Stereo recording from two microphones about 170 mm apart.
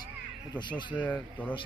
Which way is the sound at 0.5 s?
25° left (ahead or behind).